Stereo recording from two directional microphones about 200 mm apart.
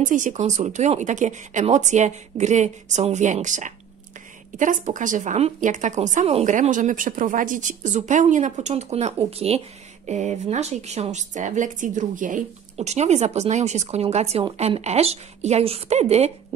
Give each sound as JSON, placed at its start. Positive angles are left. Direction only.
{"t": 0.0, "sound": "speech", "side_deg": -40}